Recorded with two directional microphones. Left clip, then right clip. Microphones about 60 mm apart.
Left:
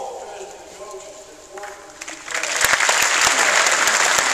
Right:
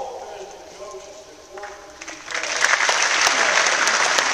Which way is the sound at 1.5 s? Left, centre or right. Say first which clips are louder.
Left 1 dB; centre.